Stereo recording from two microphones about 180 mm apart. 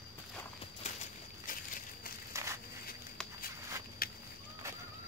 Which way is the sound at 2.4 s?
15° right (ahead or behind).